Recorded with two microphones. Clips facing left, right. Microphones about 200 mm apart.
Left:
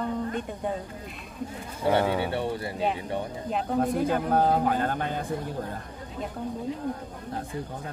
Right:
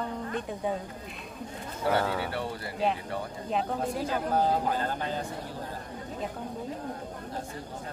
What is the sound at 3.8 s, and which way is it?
A man's voice, 55° left (ahead or behind).